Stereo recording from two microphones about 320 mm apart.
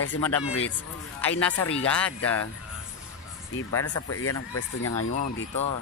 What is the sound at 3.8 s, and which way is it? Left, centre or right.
Speech, left.